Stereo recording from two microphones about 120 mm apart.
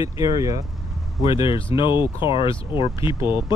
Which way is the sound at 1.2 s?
50° left (ahead or behind).